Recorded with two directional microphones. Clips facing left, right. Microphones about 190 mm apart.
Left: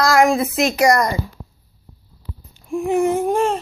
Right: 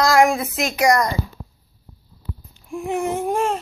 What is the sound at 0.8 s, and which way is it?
Baby cry, 5° left (ahead or behind).